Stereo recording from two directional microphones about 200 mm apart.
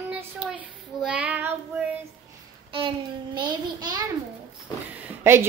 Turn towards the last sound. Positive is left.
turn(degrees=-10)  # may be behind; listen again after turning